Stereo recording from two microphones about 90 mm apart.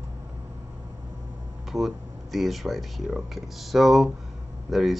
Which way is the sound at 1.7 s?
Centre (ahead or behind).